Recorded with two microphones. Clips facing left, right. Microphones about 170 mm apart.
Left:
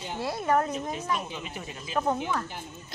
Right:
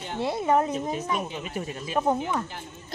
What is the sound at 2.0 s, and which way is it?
Speech, 15° right (ahead or behind).